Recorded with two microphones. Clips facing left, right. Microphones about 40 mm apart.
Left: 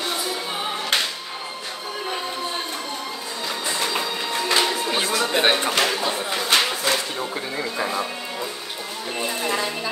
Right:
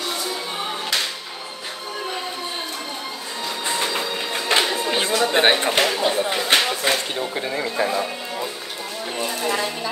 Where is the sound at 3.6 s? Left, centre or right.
Centre.